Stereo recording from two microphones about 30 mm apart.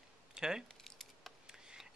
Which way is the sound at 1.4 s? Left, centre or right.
Right.